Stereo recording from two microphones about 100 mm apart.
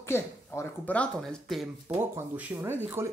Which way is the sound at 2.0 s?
20° right (ahead or behind).